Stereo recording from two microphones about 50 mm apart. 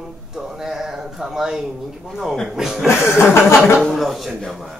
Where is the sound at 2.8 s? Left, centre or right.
Left.